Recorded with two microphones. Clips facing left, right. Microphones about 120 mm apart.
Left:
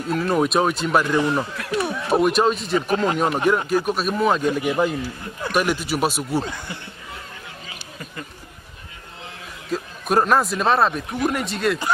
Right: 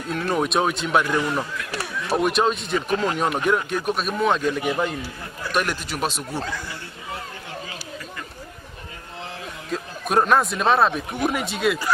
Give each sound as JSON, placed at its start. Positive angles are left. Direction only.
{"t": 0.1, "sound": "a man's voice", "side_deg": 0}
{"t": 1.8, "sound": "run", "side_deg": 25}
{"t": 2.1, "sound": "a man's voice", "side_deg": 0}
{"t": 9.7, "sound": "a man's voice", "side_deg": 0}